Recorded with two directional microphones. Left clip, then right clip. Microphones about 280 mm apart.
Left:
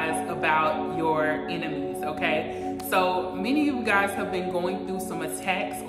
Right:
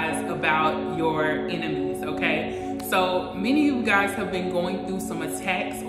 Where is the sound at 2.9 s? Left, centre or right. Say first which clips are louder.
Right 1 dB; centre.